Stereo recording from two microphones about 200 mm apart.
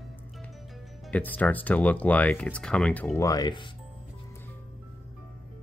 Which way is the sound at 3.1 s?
15° left (ahead or behind).